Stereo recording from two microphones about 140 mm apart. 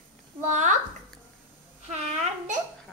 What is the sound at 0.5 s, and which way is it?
Speech, 60° right (ahead or behind).